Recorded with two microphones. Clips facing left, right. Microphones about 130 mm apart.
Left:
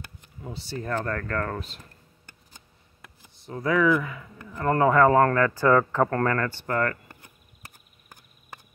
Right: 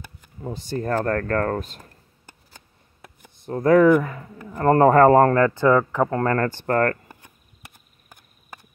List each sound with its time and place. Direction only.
0.4 s speech: 45° right (ahead or behind)
3.2 s speech: 50° right (ahead or behind); by 6.2 s 15° right (ahead or behind)
6.2 s speech: 35° right (ahead or behind)
6.6 s speech: 45° right (ahead or behind)